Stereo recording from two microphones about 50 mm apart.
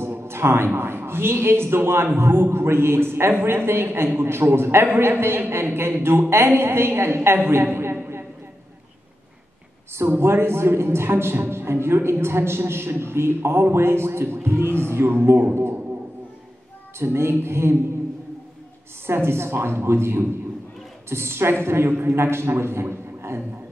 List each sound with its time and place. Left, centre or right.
0.2 s speech: right
7.4 s a sound: right
10.0 s a man's voice: right
17.0 s a man's voice: right
19.0 s a man's voice: right